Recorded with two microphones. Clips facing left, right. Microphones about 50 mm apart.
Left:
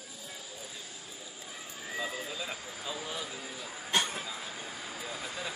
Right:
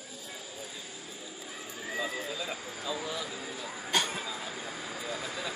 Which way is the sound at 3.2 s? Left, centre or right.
Centre.